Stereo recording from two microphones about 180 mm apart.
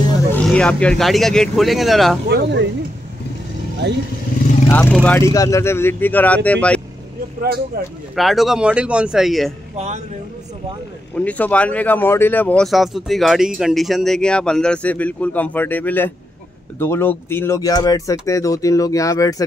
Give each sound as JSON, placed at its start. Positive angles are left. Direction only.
{"t": 0.3, "sound": "speech", "side_deg": 5}
{"t": 2.2, "sound": "speech", "side_deg": -70}
{"t": 4.6, "sound": "speech", "side_deg": 10}
{"t": 8.2, "sound": "speech", "side_deg": 0}
{"t": 9.8, "sound": "a man's voice", "side_deg": -40}
{"t": 11.1, "sound": "speech", "side_deg": 10}